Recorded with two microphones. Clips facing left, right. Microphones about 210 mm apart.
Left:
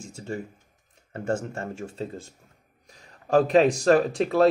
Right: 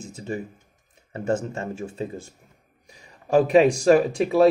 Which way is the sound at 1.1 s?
20° right (ahead or behind).